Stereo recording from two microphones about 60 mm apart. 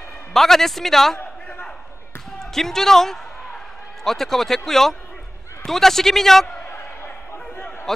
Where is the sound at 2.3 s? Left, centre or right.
Centre.